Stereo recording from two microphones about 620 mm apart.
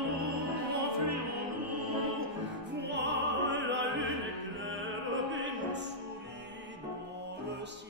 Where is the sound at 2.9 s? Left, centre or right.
Centre.